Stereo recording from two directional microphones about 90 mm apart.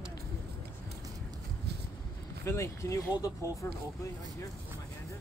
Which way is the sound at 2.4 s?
30° left (ahead or behind).